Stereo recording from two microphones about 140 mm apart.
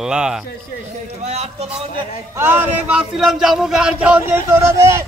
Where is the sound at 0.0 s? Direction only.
5° right (ahead or behind).